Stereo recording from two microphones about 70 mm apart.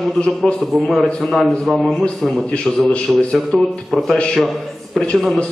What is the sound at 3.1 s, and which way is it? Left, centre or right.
A man's voice, centre.